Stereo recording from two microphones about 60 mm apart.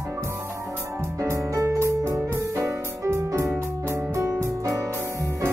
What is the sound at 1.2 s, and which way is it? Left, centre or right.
Music, right.